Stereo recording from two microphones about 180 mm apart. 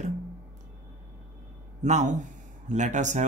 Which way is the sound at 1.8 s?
40° right (ahead or behind).